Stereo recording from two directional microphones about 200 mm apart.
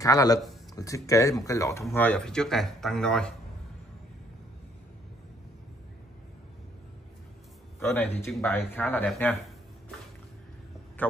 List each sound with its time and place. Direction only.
0.0 s speech: 15° left (ahead or behind)
7.8 s speech: 10° left (ahead or behind)
11.0 s speech: 10° left (ahead or behind)